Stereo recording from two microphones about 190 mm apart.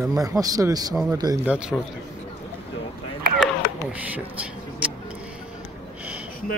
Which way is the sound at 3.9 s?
10° right (ahead or behind).